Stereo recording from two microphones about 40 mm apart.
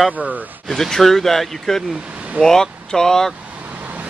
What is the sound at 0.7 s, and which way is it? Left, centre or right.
Speech, centre.